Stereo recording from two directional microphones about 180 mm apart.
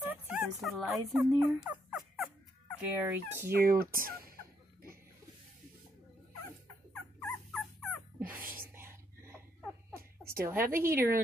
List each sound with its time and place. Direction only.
0.0 s speech: 5° right (ahead or behind)
1.6 s turkey: 5° right (ahead or behind)
2.8 s a woman's voice: 10° right (ahead or behind)
3.8 s fowl: 55° right (ahead or behind)
6.9 s dog: 10° left (ahead or behind)
8.5 s whispering: 15° right (ahead or behind)
10.3 s a woman's voice: 15° right (ahead or behind)